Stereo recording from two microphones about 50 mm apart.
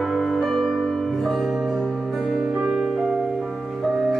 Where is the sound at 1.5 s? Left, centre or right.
Centre.